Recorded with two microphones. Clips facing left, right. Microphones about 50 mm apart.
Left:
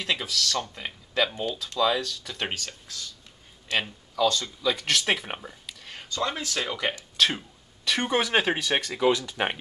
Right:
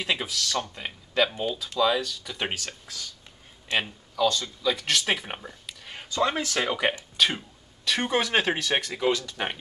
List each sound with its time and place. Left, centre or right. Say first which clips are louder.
0.0 s speech: even; centre
4.1 s speech: even; centre
7.2 s speech: even; centre
9.1 s speech: left 2 dB; centre